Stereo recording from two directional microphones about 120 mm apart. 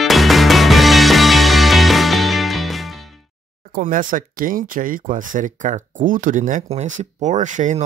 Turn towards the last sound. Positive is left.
turn(degrees=-90)